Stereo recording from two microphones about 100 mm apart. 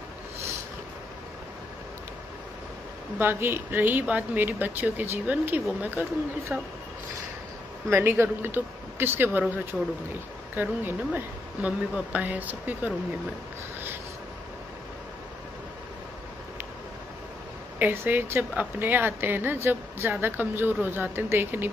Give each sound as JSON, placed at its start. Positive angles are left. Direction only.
{"t": 3.2, "sound": "speech", "side_deg": -25}
{"t": 7.9, "sound": "speech", "side_deg": -20}
{"t": 9.7, "sound": "speech", "side_deg": 5}
{"t": 10.5, "sound": "speech", "side_deg": -20}
{"t": 17.7, "sound": "speech", "side_deg": -20}